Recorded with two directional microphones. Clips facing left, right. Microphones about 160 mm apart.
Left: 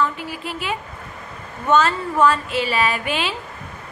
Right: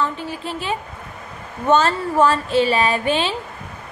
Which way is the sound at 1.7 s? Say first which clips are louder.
Right 1 dB; 30° right (ahead or behind).